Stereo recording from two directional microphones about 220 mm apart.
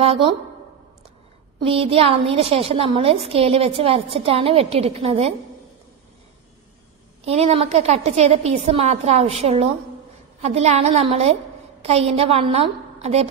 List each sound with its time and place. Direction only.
0.0 s a woman's voice: 25° right (ahead or behind)
1.6 s a woman's voice: 25° right (ahead or behind)
7.2 s a woman's voice: 30° right (ahead or behind)